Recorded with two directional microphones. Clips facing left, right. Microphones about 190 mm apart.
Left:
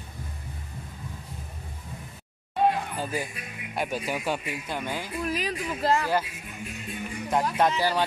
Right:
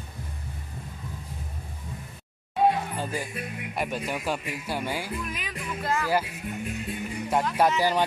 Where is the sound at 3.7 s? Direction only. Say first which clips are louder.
Left 1 dB; centre (ahead or behind).